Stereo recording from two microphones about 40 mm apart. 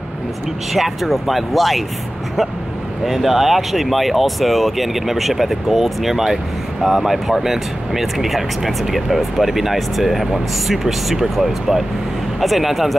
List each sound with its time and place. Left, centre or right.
0.7 s speech: centre
3.1 s speech: centre